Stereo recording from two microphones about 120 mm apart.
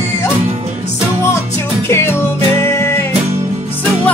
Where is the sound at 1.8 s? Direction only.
20° left (ahead or behind).